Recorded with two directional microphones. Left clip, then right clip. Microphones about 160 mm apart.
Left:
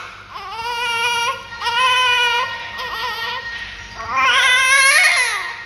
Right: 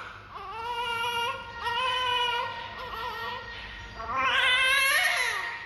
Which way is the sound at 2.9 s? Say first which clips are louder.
Left 11 dB; 15° left (ahead or behind).